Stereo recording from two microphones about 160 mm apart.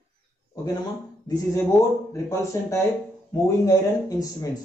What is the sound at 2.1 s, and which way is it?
Speech, 20° left (ahead or behind).